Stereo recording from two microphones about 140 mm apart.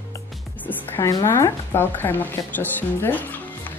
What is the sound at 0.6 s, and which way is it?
A woman's voice, 20° left (ahead or behind).